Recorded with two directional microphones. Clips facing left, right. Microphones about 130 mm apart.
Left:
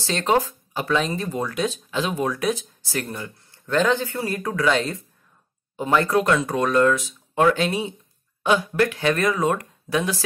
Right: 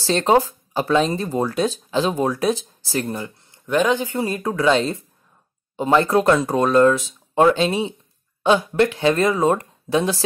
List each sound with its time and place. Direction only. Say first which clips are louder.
0.0 s speech: right 4 dB; 35° right (ahead or behind)